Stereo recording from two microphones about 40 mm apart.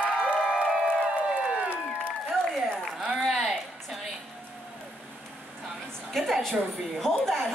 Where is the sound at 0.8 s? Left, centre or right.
Right.